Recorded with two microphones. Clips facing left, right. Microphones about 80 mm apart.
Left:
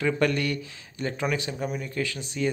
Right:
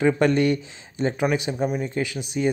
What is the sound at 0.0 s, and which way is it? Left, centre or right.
Speech, right.